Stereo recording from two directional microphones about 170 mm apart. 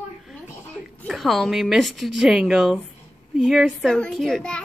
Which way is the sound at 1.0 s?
Centre (ahead or behind).